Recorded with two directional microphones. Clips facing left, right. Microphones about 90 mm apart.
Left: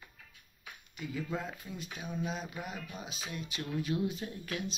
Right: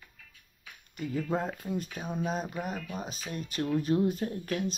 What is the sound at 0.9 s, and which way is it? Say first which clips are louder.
Speech: right 6 dB; 45° right (ahead or behind).